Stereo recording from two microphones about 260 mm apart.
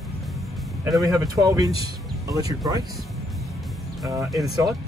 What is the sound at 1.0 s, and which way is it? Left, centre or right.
Speech, centre.